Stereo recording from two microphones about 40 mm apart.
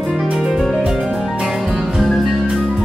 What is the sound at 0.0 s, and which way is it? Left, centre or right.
Music, centre.